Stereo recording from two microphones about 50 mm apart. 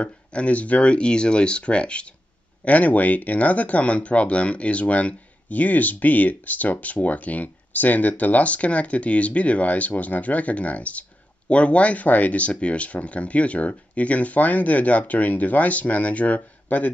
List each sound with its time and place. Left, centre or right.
0.0 s speech: left